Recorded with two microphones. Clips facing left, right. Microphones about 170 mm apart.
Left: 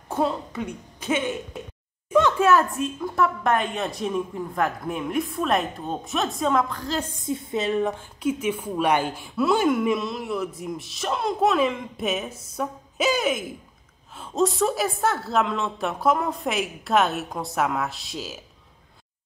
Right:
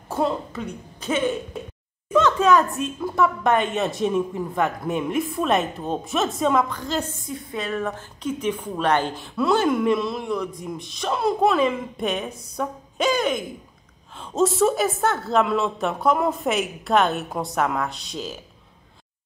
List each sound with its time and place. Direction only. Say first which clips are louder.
2.1 s a woman's voice: right 1 dB; 10° left (ahead or behind)
7.2 s a woman's voice: left 4 dB; 25° left (ahead or behind)
8.2 s a woman's voice: left 1 dB; 10° left (ahead or behind)